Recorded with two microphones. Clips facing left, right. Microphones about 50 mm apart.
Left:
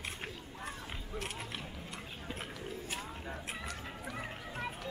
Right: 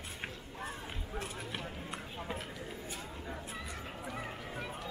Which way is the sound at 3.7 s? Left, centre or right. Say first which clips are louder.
Right 1 dB; centre.